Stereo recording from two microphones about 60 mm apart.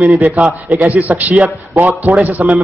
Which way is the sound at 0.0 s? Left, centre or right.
Right.